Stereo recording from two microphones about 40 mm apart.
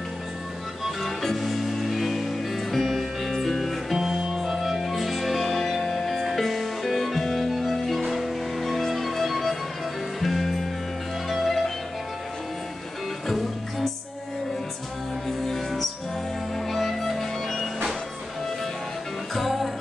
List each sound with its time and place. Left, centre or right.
1.2 s music: centre
13.3 s music: centre
15.2 s music: centre
19.3 s music: centre